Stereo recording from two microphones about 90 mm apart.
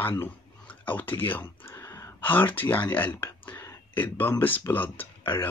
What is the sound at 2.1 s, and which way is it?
Speech, 20° left (ahead or behind).